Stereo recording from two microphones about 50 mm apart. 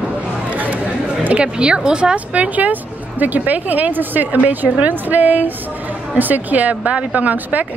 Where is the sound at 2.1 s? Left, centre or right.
Right.